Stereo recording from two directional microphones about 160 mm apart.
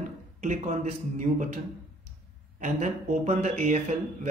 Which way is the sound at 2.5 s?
50° right (ahead or behind).